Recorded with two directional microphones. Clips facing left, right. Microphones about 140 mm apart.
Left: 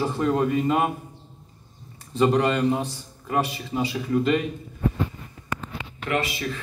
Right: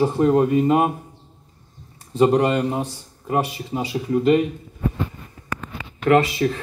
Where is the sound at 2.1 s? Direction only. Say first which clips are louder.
Right 4 dB; 15° right (ahead or behind).